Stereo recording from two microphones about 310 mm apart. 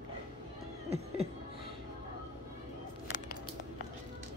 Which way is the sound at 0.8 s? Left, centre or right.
Centre.